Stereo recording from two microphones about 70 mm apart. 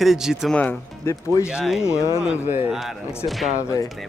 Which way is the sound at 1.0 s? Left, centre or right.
Left.